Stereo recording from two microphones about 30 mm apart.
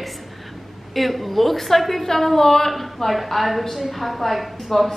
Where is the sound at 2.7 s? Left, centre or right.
Centre.